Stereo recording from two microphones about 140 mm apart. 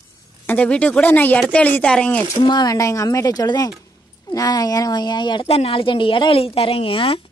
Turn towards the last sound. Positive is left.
turn(degrees=40)  # may be behind; listen again after turning